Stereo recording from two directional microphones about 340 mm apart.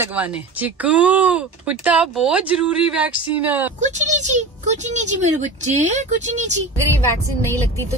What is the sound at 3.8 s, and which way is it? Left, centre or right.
Speech, right.